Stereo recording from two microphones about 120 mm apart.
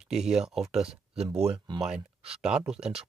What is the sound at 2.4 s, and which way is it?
Speech, 5° right (ahead or behind).